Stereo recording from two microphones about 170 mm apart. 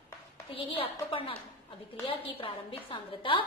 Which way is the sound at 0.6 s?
30° left (ahead or behind).